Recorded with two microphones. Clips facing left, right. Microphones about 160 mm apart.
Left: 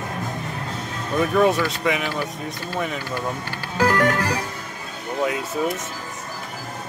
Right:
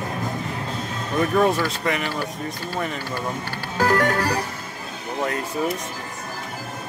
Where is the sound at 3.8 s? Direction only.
40° right (ahead or behind).